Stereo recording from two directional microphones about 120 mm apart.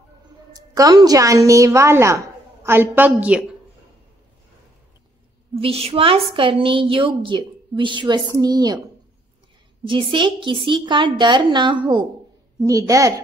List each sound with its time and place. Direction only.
0.6 s a woman's voice: 30° right (ahead or behind); by 3.4 s 10° right (ahead or behind)
5.6 s a woman's voice: 55° right (ahead or behind); by 8.7 s 35° right (ahead or behind)
9.8 s a woman's voice: 45° right (ahead or behind)
12.5 s speech: 30° right (ahead or behind)